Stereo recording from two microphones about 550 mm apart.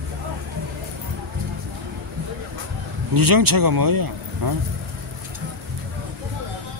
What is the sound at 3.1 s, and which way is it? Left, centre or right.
Speech, right.